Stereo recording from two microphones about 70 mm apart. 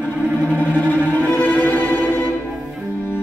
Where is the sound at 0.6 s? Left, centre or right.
Left.